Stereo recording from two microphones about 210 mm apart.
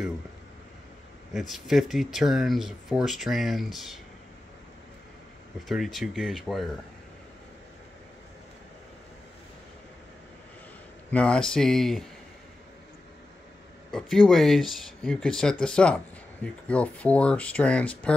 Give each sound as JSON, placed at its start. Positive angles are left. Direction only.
{"t": 1.5, "sound": "speech", "side_deg": 0}
{"t": 5.7, "sound": "speech", "side_deg": 0}
{"t": 11.1, "sound": "speech", "side_deg": 5}
{"t": 13.9, "sound": "speech", "side_deg": 0}